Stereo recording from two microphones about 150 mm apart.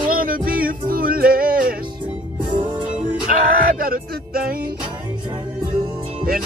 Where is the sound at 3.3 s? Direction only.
70° right (ahead or behind).